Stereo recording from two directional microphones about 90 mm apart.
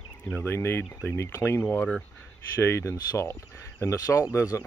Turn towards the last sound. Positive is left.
turn(degrees=35)  # may be behind; listen again after turning